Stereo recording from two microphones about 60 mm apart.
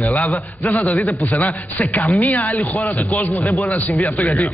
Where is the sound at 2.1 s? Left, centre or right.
Left.